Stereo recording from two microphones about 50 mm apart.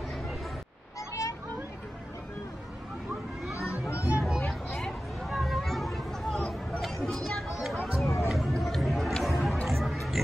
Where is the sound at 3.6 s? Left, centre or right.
Left.